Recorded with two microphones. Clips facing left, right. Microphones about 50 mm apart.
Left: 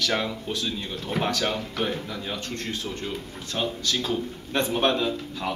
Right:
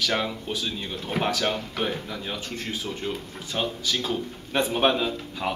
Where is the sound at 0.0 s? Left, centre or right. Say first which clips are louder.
Even; centre.